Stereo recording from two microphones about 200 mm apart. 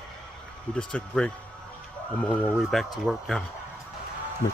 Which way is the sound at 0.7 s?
5° left (ahead or behind).